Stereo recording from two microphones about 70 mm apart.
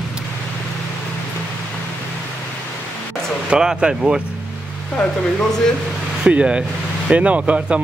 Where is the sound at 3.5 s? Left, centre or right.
Centre.